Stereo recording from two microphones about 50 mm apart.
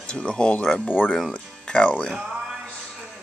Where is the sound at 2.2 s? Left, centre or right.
Centre.